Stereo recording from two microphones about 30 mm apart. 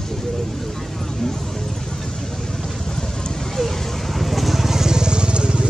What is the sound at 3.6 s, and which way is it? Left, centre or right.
Vehicle, centre.